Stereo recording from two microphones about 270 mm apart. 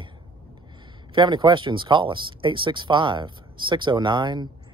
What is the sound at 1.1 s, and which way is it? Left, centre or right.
Speech, centre.